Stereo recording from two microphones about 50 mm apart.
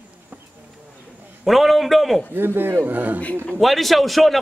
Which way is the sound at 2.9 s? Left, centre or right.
Right.